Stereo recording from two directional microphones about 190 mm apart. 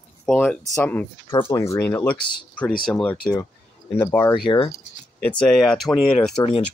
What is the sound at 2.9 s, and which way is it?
Speech, 5° left (ahead or behind).